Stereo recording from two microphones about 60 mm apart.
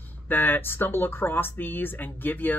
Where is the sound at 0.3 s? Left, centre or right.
Left.